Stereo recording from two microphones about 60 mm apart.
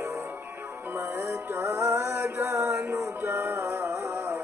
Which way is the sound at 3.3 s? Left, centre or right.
Right.